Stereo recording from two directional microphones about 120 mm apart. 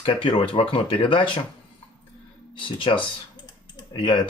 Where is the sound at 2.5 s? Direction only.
45° left (ahead or behind).